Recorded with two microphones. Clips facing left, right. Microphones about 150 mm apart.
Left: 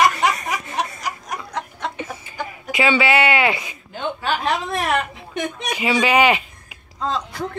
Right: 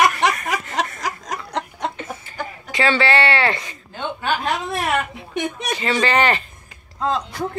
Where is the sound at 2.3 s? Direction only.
10° left (ahead or behind).